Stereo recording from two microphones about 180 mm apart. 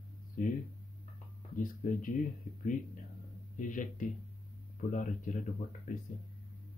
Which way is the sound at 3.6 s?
45° left (ahead or behind).